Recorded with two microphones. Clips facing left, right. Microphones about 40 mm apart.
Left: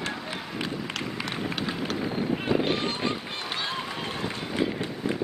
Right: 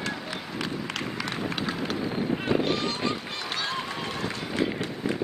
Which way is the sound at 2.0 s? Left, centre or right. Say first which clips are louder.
Even; centre.